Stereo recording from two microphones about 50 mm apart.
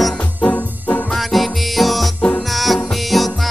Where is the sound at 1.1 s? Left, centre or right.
Centre.